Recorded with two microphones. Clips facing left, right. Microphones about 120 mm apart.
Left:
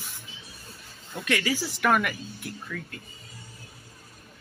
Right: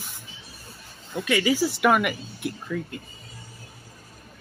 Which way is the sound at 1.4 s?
15° right (ahead or behind).